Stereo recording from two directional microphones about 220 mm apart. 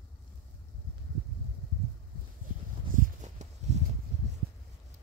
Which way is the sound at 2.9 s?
35° right (ahead or behind).